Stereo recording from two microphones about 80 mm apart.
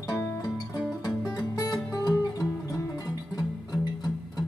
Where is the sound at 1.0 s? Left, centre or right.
Left.